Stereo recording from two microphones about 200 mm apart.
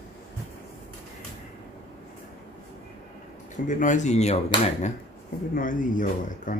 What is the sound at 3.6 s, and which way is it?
Speech, 40° left (ahead or behind).